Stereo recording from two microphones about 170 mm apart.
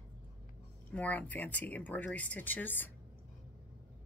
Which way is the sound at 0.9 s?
10° left (ahead or behind).